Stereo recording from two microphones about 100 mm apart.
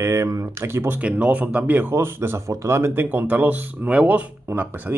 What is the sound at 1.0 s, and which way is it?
Speech, 15° right (ahead or behind).